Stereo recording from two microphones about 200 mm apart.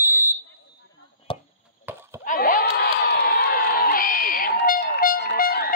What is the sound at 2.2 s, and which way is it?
Crowd, 45° left (ahead or behind).